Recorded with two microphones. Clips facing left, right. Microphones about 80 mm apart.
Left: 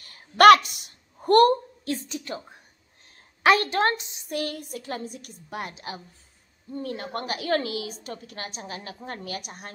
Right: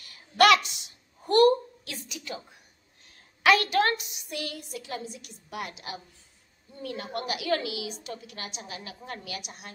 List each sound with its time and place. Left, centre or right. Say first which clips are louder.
0.0 s a sound: left 7 dB; left
3.4 s a woman's voice: left 2 dB; left
4.4 s a woman's voice: left 5 dB; left